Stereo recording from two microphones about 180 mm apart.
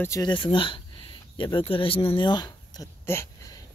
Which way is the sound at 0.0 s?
20° left (ahead or behind).